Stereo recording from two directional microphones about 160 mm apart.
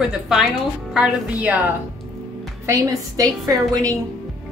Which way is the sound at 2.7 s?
20° right (ahead or behind).